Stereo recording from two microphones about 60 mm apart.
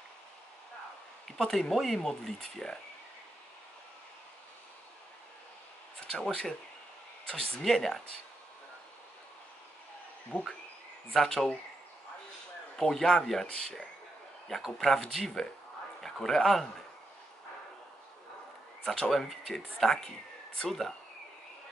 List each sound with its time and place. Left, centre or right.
1.2 s speech: centre
6.2 s speech: centre
10.3 s insect: left
11.1 s speech: centre
12.7 s speech: centre
18.9 s speech: centre